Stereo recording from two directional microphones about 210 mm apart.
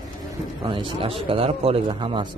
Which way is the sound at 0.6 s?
25° right (ahead or behind).